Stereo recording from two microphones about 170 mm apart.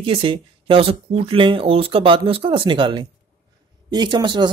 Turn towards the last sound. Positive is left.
turn(degrees=-25)  # may be behind; listen again after turning